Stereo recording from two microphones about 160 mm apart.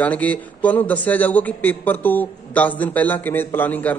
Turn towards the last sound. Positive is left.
turn(degrees=10)  # may be behind; listen again after turning